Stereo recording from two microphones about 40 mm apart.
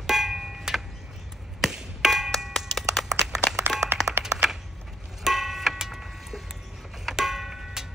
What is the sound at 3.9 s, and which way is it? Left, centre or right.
Clapping, right.